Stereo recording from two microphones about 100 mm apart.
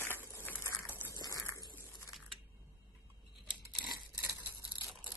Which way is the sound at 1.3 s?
35° left (ahead or behind).